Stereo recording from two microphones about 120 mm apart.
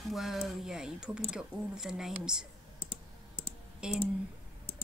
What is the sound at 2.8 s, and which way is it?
Computer keyboard, 50° left (ahead or behind).